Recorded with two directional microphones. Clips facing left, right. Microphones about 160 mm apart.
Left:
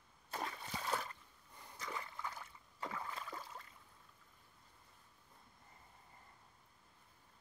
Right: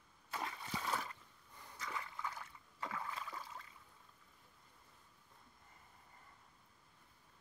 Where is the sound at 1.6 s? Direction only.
30° left (ahead or behind).